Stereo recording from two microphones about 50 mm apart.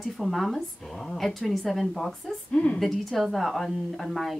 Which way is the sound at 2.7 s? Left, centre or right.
Centre.